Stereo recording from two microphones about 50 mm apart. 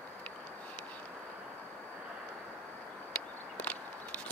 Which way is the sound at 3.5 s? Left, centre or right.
Left.